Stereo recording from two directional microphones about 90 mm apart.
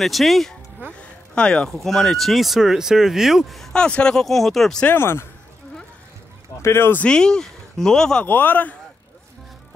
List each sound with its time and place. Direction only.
0.0 s speech: centre (ahead or behind)
4.8 s speech: 25° left (ahead or behind)
6.6 s speech: 30° left (ahead or behind)
7.1 s speech: 10° left (ahead or behind)
8.3 s speech: 20° left (ahead or behind)